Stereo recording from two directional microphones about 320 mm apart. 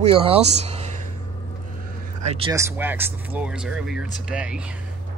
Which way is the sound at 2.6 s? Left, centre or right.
Centre.